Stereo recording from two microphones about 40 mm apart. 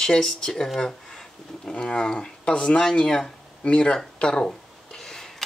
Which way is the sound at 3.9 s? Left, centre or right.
Centre.